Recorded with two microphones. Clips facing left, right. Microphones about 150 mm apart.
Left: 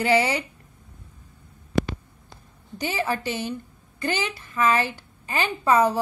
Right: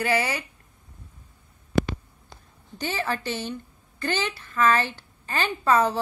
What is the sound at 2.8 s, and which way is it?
A woman's voice, 15° left (ahead or behind).